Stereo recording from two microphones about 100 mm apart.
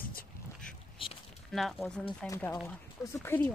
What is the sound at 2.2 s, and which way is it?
Speech, 10° left (ahead or behind).